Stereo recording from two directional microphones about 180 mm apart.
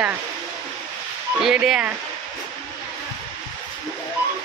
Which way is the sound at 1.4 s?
5° right (ahead or behind).